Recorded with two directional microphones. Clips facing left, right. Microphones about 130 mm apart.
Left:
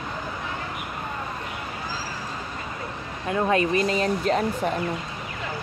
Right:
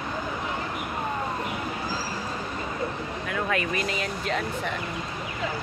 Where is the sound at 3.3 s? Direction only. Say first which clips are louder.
Left 7 dB; 30° left (ahead or behind).